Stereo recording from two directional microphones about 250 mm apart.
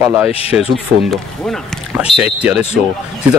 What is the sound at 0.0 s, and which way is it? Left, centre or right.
Speech, centre.